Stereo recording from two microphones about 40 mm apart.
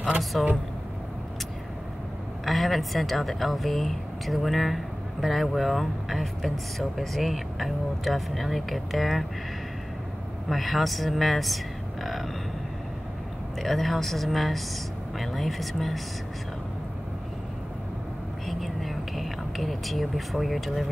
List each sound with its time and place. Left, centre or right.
0.2 s speech: centre
2.4 s speech: centre
10.5 s speech: centre
13.6 s speech: centre
18.5 s speech: centre